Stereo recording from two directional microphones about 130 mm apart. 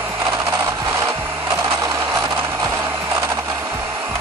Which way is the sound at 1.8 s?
25° right (ahead or behind).